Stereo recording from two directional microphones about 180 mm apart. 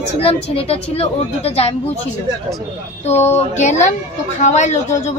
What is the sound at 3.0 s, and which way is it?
A woman's voice, 35° left (ahead or behind).